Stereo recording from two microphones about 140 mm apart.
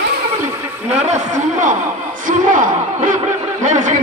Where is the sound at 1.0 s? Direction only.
60° right (ahead or behind).